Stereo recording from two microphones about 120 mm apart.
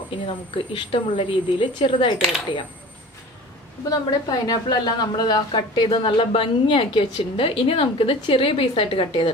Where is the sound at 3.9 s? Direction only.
30° left (ahead or behind).